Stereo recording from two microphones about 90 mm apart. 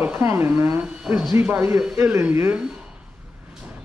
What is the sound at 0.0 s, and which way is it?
Speech, 25° right (ahead or behind).